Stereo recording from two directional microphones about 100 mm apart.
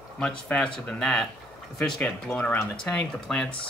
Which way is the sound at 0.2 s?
10° left (ahead or behind).